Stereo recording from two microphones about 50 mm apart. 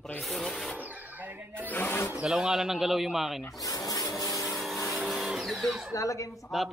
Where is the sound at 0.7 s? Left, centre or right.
Right.